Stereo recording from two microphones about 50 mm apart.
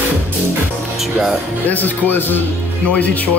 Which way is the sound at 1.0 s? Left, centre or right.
Centre.